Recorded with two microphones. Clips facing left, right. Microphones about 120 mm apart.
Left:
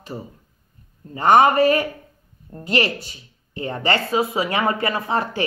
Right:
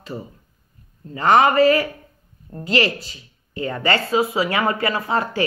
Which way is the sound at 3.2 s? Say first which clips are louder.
Right 3 dB; 25° left (ahead or behind).